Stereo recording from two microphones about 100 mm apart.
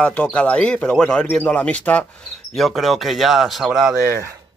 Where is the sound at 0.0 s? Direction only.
10° left (ahead or behind).